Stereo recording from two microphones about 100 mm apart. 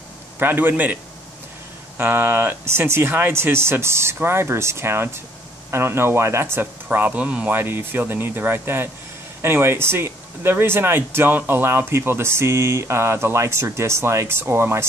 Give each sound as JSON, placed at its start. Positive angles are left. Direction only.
{"t": 0.4, "sound": "speech", "side_deg": -20}
{"t": 2.0, "sound": "speech", "side_deg": -20}